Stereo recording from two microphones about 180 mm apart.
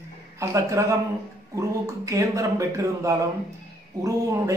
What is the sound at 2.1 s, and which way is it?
A man's voice, 15° right (ahead or behind).